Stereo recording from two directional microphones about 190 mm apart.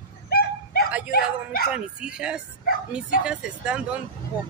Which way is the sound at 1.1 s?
50° left (ahead or behind).